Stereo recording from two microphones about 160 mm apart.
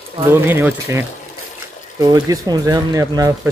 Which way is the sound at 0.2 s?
15° right (ahead or behind).